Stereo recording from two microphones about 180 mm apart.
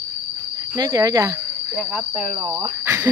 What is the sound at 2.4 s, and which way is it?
Speech, 30° right (ahead or behind).